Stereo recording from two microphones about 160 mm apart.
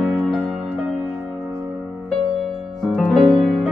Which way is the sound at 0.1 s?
Centre (ahead or behind).